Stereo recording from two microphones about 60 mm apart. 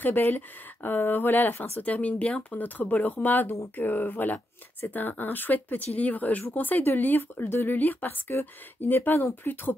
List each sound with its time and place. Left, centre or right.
0.0 s speech: left
1.8 s speech: left